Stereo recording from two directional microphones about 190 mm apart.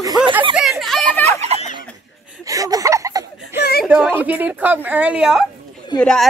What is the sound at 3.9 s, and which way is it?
A woman's voice, 10° right (ahead or behind).